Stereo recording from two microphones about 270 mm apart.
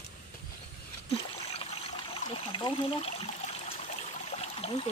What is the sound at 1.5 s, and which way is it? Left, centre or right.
Trickle, left.